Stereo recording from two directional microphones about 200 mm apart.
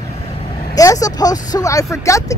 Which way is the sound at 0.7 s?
15° left (ahead or behind).